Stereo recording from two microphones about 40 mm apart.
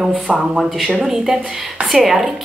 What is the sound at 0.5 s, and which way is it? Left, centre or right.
Speech, centre.